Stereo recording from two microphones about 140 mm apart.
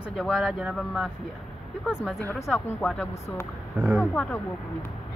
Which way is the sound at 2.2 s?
15° left (ahead or behind).